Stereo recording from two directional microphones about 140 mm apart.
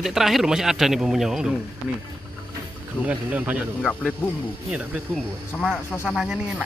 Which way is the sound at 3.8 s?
10° left (ahead or behind).